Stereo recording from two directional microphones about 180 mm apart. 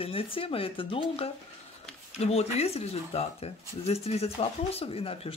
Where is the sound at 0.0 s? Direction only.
30° left (ahead or behind).